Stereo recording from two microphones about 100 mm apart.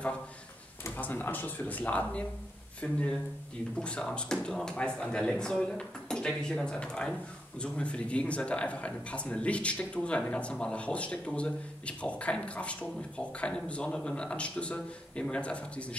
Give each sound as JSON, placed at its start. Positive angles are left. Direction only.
{"t": 0.8, "sound": "speech", "side_deg": 20}